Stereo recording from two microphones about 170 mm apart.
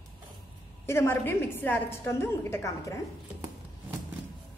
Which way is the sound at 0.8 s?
15° left (ahead or behind).